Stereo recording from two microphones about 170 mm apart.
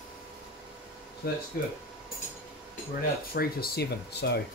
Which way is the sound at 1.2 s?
65° left (ahead or behind).